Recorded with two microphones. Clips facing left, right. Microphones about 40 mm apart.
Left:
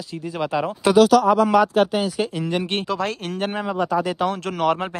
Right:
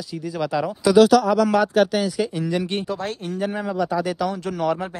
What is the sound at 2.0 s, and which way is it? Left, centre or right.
Speech, left.